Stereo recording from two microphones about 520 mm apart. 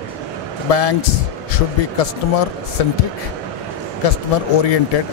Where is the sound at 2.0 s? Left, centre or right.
Left.